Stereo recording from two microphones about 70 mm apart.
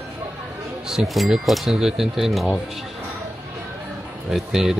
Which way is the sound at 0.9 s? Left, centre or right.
Centre.